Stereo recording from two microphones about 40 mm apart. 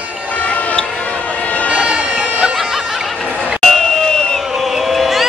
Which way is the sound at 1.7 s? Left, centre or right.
Right.